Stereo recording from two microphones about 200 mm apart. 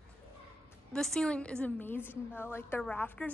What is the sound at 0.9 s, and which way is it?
A woman's voice, 5° left (ahead or behind).